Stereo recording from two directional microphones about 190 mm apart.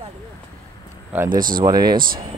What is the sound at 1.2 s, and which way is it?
Speech, 45° right (ahead or behind).